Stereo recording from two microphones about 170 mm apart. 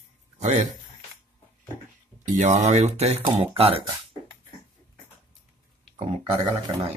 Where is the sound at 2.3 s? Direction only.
40° right (ahead or behind).